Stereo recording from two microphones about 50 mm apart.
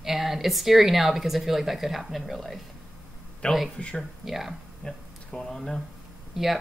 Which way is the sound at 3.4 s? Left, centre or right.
Left.